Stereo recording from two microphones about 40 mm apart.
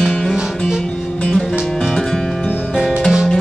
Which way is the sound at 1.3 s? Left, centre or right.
Centre.